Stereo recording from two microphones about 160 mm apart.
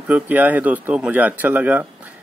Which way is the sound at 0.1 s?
10° right (ahead or behind).